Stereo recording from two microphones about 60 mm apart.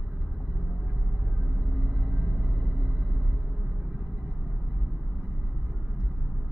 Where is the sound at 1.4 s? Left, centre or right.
Right; by 3.3 s centre.